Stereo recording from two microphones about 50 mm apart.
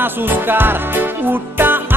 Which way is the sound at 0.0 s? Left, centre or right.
Right.